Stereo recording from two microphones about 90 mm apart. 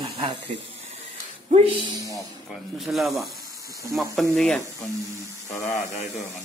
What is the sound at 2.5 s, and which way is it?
Speech, 5° right (ahead or behind).